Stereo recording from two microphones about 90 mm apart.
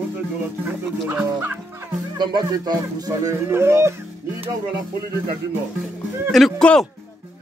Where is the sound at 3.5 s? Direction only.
30° right (ahead or behind).